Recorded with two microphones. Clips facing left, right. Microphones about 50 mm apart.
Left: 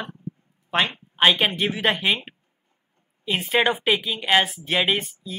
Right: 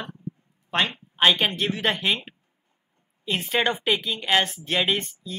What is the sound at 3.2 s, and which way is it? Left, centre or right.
Speech, centre.